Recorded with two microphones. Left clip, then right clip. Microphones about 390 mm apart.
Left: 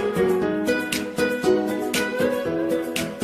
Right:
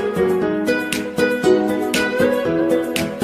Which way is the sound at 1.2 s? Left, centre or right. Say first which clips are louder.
Right 5 dB; right.